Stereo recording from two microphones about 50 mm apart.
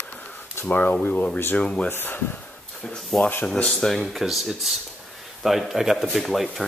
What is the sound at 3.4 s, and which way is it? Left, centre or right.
Speech, centre.